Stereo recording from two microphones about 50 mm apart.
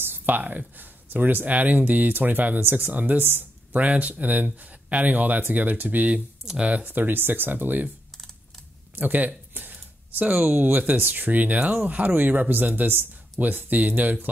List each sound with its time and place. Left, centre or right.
0.0 s speech: right
6.4 s speech: centre
6.9 s speech: right
8.9 s speech: right